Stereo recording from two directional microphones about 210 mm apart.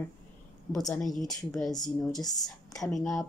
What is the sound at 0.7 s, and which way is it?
Speech, 15° left (ahead or behind).